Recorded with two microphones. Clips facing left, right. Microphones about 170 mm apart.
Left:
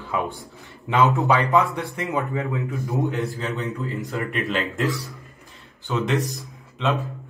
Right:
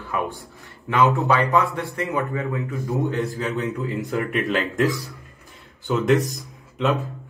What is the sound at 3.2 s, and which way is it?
A man's voice, centre (ahead or behind).